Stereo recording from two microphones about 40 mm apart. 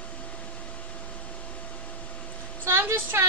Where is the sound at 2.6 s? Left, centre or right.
Right.